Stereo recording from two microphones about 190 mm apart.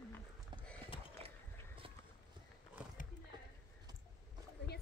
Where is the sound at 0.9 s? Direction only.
30° left (ahead or behind).